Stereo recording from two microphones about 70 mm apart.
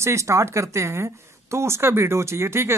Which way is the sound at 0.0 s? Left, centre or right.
Right.